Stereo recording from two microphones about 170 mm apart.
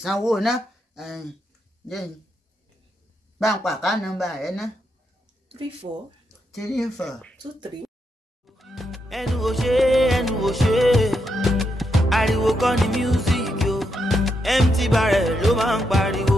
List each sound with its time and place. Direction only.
0.0 s speech: centre (ahead or behind)
3.3 s speech: centre (ahead or behind)
5.5 s speech: 35° right (ahead or behind)
6.5 s speech: centre (ahead or behind)
8.5 s music: centre (ahead or behind)